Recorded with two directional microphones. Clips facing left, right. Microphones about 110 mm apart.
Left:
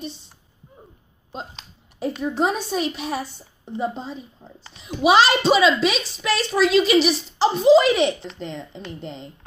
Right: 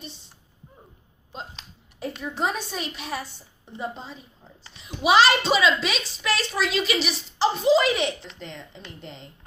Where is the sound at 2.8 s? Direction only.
5° left (ahead or behind).